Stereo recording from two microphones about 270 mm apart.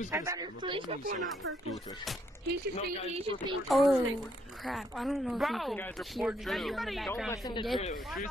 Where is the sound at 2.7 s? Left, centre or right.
Left.